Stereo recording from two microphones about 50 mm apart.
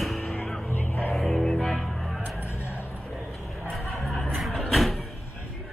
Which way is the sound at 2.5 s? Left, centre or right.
Left.